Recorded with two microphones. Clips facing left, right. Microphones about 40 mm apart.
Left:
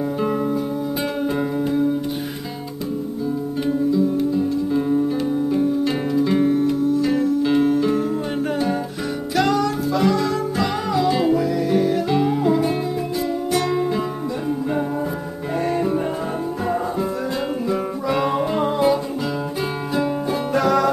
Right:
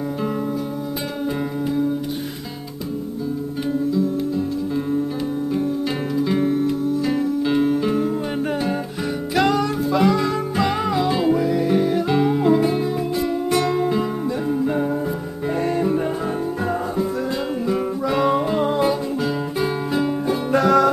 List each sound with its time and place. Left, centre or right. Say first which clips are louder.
3.9 s music: left 2 dB; centre
9.3 s music: even; centre
11.1 s music: even; centre
11.4 s music: even; centre
15.6 s music: even; centre
17.6 s music: right 3 dB; centre
20.5 s music: right 2 dB; centre